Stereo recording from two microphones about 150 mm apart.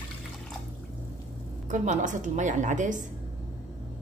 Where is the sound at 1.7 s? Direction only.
55° right (ahead or behind).